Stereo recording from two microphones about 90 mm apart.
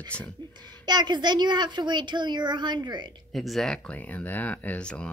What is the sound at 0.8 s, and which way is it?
Speech, 55° right (ahead or behind).